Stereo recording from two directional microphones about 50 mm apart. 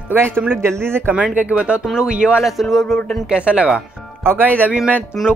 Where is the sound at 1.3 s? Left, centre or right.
Right.